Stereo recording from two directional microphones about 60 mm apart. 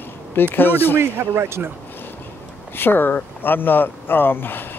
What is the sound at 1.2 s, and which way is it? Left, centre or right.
Speech, right.